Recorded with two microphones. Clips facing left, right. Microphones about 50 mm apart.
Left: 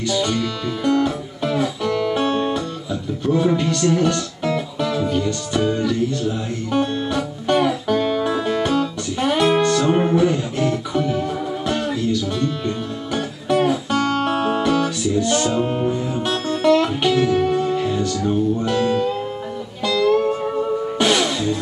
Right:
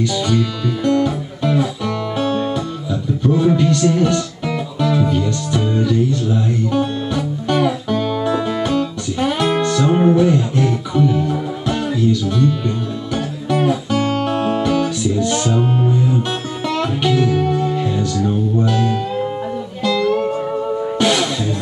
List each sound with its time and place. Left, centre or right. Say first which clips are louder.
0.1 s music: right 2 dB; centre
2.1 s music: right 1 dB; left
3.3 s music: right 3 dB; centre
14.1 s guitar: right 1 dB; centre
15.6 s music: right 2 dB; centre
16.1 s music: right 1 dB; centre
20.1 s music: even; centre